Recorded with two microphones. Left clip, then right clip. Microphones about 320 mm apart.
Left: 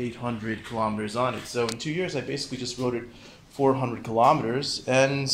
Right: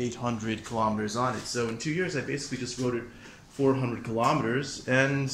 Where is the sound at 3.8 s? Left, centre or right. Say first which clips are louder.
Left 6 dB; centre.